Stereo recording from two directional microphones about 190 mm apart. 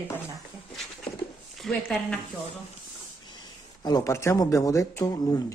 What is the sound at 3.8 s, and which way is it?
Speech, 20° left (ahead or behind).